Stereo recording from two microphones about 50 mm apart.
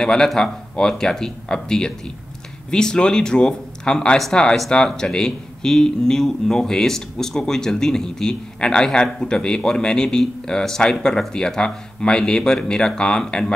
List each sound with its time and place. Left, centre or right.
0.0 s speech: centre